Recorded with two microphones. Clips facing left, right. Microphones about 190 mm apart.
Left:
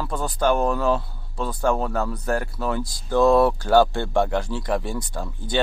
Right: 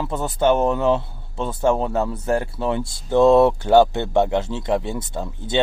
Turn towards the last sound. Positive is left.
turn(degrees=-25)  # may be behind; listen again after turning